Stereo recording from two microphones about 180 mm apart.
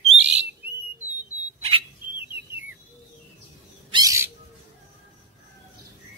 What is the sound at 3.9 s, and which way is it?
Bird, 15° right (ahead or behind).